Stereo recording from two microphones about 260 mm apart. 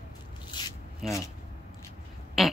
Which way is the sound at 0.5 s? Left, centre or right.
Centre.